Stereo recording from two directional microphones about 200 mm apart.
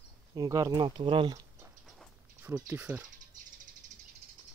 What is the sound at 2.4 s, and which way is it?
Speech, 10° right (ahead or behind).